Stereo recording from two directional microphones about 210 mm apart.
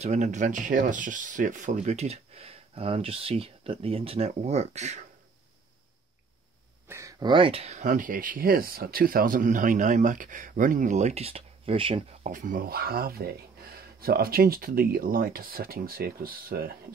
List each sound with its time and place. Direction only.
0.0 s speech: 35° right (ahead or behind)
6.9 s speech: 15° right (ahead or behind); by 16.7 s 45° right (ahead or behind)